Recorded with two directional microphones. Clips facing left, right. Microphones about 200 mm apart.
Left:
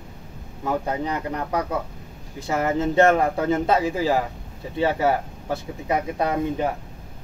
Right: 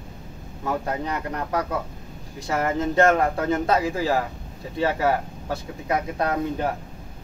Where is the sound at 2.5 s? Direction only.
15° left (ahead or behind).